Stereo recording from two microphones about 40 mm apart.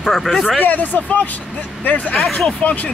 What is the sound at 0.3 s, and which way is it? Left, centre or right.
Speech, centre.